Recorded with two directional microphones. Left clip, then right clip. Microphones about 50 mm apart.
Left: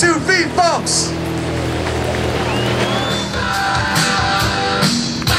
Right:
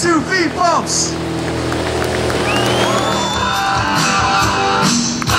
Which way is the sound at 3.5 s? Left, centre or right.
Left.